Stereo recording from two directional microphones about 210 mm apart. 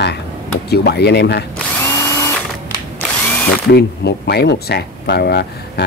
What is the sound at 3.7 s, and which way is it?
Speech, 50° left (ahead or behind).